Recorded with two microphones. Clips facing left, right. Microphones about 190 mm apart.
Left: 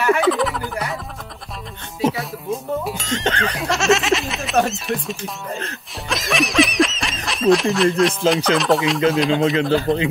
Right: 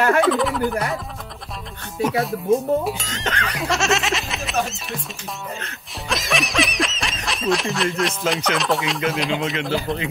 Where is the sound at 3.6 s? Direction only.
Centre (ahead or behind).